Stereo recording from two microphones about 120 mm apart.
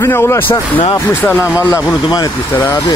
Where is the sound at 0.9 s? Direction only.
15° left (ahead or behind); by 2.3 s 35° left (ahead or behind).